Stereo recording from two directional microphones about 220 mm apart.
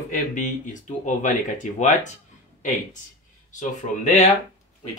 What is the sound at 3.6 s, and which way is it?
Speech, 30° left (ahead or behind).